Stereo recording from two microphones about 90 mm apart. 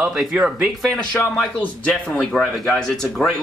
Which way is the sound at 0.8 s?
10° left (ahead or behind).